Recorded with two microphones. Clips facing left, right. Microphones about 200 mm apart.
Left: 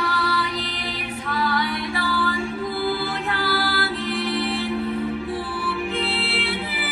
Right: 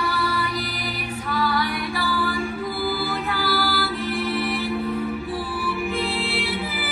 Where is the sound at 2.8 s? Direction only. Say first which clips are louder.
Right 1 dB; 5° right (ahead or behind).